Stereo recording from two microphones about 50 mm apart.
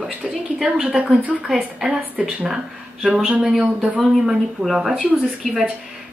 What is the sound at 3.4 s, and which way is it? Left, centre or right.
Speech, centre.